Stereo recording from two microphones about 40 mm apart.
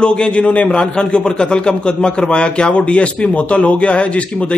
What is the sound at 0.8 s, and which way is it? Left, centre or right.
A man's voice, left.